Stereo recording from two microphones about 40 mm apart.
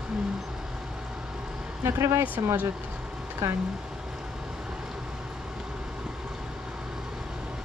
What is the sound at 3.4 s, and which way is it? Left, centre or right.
Speech, right.